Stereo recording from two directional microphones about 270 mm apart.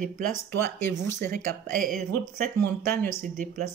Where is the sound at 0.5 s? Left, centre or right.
Centre.